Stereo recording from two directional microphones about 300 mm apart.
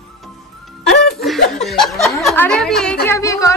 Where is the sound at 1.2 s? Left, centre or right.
Centre.